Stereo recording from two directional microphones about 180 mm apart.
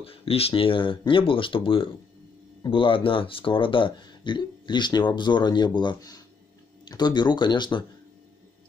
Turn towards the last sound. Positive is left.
turn(degrees=25)  # may be behind; listen again after turning